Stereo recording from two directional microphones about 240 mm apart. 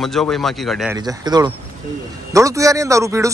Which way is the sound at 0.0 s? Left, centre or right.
Centre.